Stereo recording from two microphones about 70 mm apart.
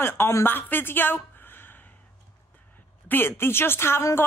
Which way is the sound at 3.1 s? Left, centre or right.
Left.